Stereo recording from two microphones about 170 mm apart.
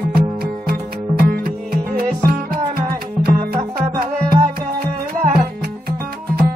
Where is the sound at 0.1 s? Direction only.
60° right (ahead or behind).